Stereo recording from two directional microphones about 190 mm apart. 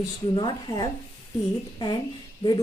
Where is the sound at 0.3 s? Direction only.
25° left (ahead or behind).